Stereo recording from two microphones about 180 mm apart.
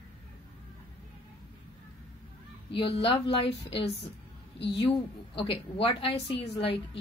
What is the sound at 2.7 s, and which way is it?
Speech, 30° left (ahead or behind).